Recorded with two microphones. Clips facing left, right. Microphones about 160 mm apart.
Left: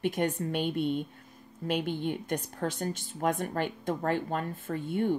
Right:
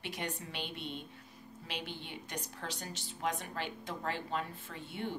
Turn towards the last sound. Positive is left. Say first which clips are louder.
# left 11 dB
turn(degrees=50)  # may be behind; listen again after turning